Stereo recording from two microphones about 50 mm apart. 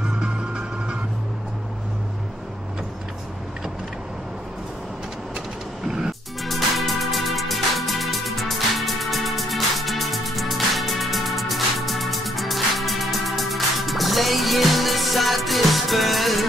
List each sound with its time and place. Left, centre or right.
0.0 s music: centre
5.9 s music: centre
6.4 s music: centre